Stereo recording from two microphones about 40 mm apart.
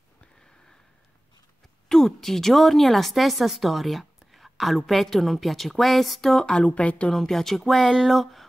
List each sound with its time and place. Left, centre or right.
1.9 s a woman's voice: centre
6.6 s a woman's voice: left
7.1 s speech: centre